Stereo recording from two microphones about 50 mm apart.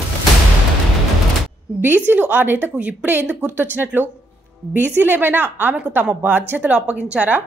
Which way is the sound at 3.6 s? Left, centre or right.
Right.